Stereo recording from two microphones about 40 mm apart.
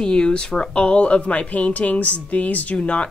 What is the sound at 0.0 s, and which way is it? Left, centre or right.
Speech, left.